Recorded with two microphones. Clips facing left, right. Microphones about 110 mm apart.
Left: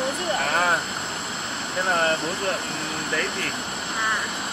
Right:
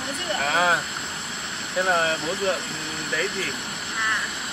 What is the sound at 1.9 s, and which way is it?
Speech, 5° right (ahead or behind).